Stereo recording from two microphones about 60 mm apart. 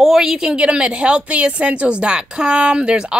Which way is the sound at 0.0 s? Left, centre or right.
Centre.